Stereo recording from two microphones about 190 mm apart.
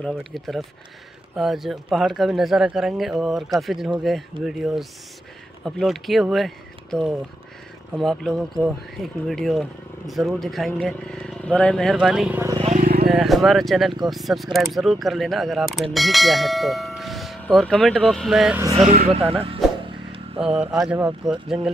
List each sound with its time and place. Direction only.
0.2 s speech: centre (ahead or behind)
12.5 s vehicle: 35° right (ahead or behind)
13.1 s speech: centre (ahead or behind)
18.8 s a sound: 35° right (ahead or behind)
20.4 s speech: 5° right (ahead or behind)